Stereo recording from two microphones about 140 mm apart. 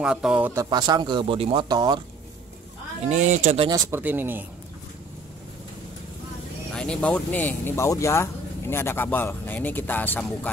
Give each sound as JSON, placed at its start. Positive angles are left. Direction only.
{"t": 0.0, "sound": "speech", "side_deg": -5}
{"t": 0.6, "sound": "speech", "side_deg": -30}
{"t": 3.1, "sound": "speech", "side_deg": -55}
{"t": 3.7, "sound": "speech", "side_deg": -15}
{"t": 6.7, "sound": "speech", "side_deg": 5}